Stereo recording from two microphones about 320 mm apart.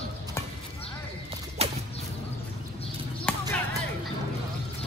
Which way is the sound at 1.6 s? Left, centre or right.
Centre.